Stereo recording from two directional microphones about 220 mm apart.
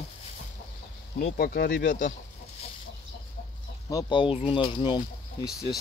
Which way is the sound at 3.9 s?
20° left (ahead or behind).